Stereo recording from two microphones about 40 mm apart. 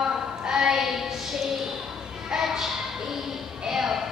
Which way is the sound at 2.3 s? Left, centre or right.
Centre.